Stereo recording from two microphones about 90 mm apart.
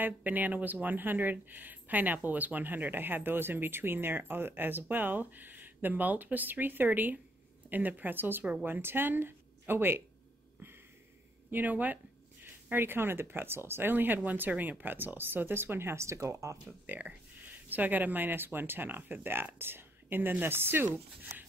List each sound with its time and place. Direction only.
0.0 s speech: 20° right (ahead or behind)
11.5 s speech: 20° right (ahead or behind); by 16.5 s 35° right (ahead or behind)
16.6 s speech: 20° right (ahead or behind)